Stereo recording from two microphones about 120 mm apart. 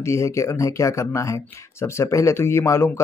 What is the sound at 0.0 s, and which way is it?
Speech, 25° left (ahead or behind).